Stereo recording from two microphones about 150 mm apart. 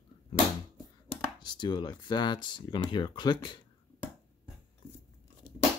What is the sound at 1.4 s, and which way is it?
Speech, 30° left (ahead or behind).